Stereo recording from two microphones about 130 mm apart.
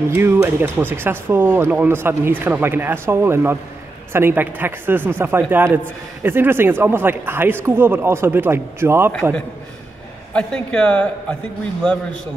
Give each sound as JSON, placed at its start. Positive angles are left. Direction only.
{"t": 0.1, "sound": "speech", "side_deg": -15}
{"t": 10.3, "sound": "a man's voice", "side_deg": 5}